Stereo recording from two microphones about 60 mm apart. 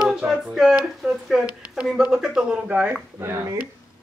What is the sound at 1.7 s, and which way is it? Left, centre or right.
Speech, centre.